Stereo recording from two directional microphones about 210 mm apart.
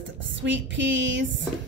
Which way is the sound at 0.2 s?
60° right (ahead or behind).